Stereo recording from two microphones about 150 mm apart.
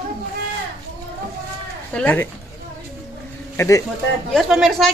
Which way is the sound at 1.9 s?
10° left (ahead or behind).